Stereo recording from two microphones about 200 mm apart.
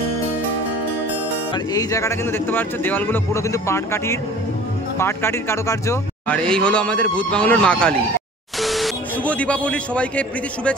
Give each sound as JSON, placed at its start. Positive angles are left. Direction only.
{"t": 1.5, "sound": "a man's voice", "side_deg": 20}